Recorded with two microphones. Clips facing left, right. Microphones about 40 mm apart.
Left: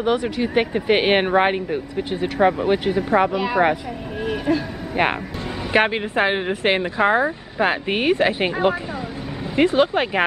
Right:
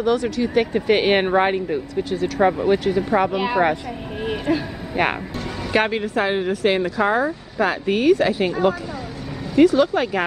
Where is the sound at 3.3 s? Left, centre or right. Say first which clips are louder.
Even; centre.